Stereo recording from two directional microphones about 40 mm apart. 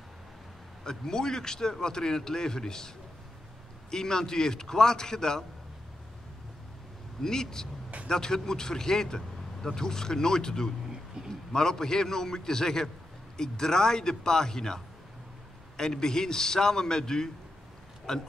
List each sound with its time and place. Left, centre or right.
0.8 s speech: centre
3.9 s speech: centre
7.2 s speech: centre
15.8 s speech: centre